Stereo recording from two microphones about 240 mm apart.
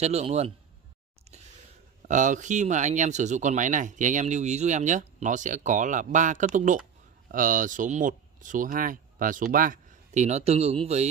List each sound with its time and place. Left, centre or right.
0.0 s speech: right
2.0 s speech: right